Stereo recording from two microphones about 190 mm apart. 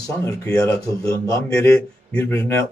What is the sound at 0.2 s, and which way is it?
Speech, 15° left (ahead or behind).